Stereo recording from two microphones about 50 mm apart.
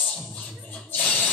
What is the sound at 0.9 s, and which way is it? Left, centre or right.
Music, left.